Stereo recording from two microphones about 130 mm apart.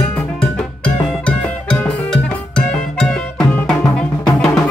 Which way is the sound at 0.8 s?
10° left (ahead or behind).